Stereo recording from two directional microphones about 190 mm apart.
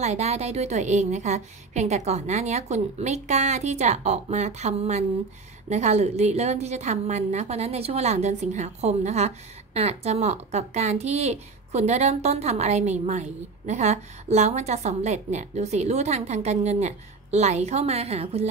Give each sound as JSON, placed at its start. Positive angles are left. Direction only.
{"t": 0.0, "sound": "speech", "side_deg": -35}